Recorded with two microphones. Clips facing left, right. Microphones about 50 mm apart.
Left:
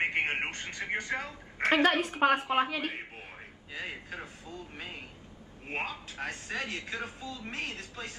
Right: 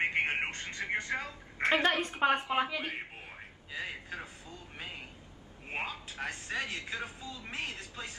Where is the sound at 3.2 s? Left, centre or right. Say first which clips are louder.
Left 1 dB; centre.